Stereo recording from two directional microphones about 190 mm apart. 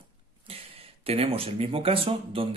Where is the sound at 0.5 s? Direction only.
30° right (ahead or behind).